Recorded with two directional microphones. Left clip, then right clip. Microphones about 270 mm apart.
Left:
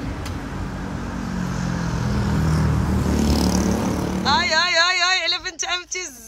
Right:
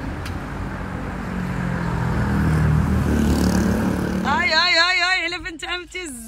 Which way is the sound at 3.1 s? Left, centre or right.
Centre.